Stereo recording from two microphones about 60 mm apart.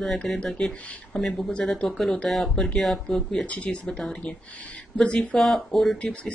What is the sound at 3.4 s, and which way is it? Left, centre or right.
Speech, left.